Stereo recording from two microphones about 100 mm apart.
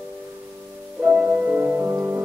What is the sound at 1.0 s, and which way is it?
Music, 15° right (ahead or behind).